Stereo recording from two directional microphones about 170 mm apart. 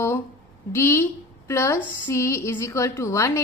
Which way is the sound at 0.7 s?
15° left (ahead or behind).